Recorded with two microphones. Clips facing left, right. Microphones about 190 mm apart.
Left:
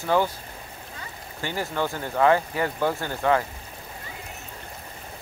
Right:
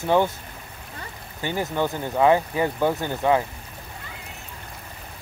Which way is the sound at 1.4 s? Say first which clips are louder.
Right 3 dB; 15° right (ahead or behind).